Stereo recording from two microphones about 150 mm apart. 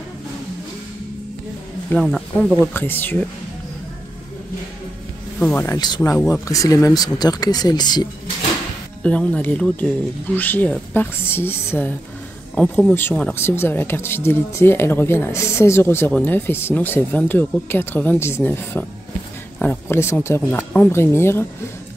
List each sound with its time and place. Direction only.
1.9 s speech: centre (ahead or behind)
2.6 s speech: 15° left (ahead or behind)
5.4 s speech: 10° left (ahead or behind)
5.8 s speech: 25° left (ahead or behind)
9.0 s speech: 10° left (ahead or behind)